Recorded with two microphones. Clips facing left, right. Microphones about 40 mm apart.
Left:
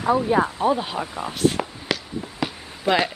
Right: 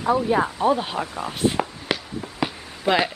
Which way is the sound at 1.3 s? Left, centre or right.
Centre.